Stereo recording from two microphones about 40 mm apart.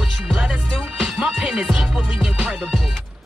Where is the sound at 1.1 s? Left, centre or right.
Centre.